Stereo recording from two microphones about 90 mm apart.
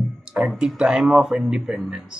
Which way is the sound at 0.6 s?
10° right (ahead or behind).